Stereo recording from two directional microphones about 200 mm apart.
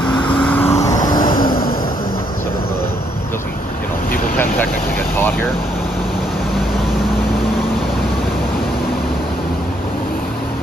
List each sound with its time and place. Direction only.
0.4 s vehicle: 10° left (ahead or behind)
1.4 s vehicle: 45° left (ahead or behind)